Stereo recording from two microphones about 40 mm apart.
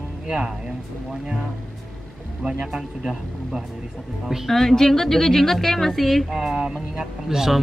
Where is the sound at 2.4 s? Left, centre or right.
Right.